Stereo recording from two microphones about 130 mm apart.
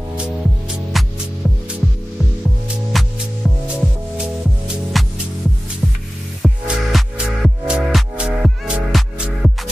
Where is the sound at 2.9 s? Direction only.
Centre (ahead or behind).